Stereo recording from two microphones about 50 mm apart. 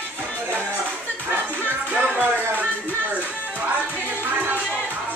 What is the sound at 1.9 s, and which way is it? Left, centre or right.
Music, right.